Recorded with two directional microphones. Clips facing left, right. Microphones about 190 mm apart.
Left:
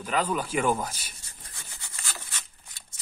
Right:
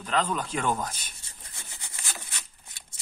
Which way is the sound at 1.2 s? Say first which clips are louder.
Even; 25° right (ahead or behind).